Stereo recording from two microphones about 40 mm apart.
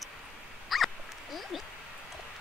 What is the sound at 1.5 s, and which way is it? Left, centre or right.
Speech, centre.